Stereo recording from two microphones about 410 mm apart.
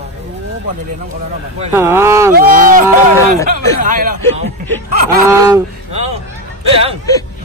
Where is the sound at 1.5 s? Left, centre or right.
Centre.